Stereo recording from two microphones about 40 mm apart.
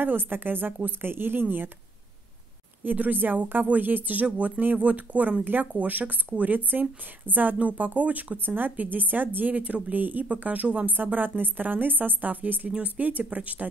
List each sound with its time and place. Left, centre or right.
0.0 s a woman's voice: right
2.8 s speech: right
5.4 s a woman's voice: right
5.7 s speech: right
10.9 s speech: right